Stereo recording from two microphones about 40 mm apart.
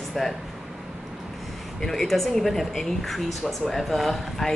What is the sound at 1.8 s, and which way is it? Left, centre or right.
A woman's voice, centre.